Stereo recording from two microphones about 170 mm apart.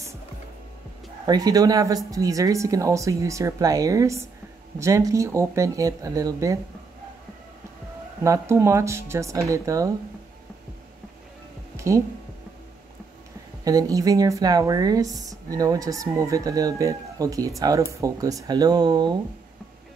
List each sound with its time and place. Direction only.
1.2 s speech: 20° right (ahead or behind)
8.2 s speech: 15° right (ahead or behind)
11.7 s music: 15° right (ahead or behind)
13.7 s speech: 20° right (ahead or behind)